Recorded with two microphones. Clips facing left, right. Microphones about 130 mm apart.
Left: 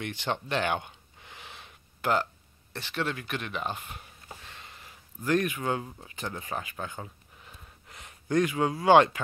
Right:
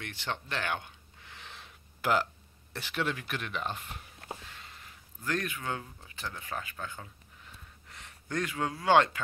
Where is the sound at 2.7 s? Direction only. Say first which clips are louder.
Left 1 dB; 10° right (ahead or behind).